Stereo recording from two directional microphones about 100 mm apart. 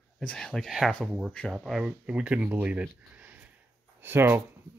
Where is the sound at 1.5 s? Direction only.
5° right (ahead or behind).